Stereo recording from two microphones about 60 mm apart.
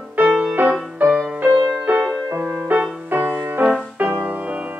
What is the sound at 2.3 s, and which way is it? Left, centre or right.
Music, right.